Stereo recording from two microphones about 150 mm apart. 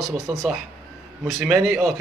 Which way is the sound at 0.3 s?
10° right (ahead or behind).